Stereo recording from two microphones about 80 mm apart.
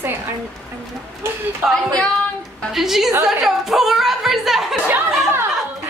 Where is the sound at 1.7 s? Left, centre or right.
Centre.